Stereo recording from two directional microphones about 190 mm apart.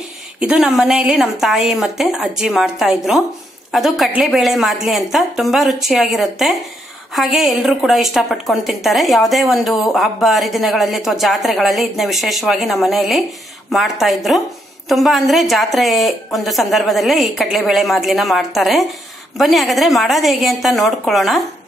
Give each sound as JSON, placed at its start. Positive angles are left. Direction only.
{"t": 0.4, "sound": "a woman's voice", "side_deg": -5}